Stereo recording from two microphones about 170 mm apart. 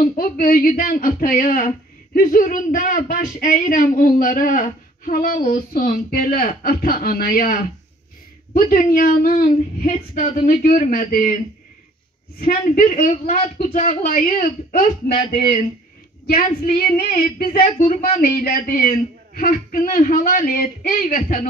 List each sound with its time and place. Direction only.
0.0 s speech: 60° left (ahead or behind)
12.4 s speech: 55° left (ahead or behind)
16.6 s speech: 60° left (ahead or behind)